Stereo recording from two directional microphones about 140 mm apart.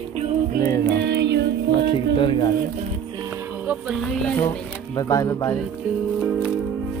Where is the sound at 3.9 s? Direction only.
5° left (ahead or behind).